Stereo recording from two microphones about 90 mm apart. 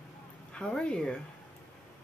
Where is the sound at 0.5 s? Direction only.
10° left (ahead or behind).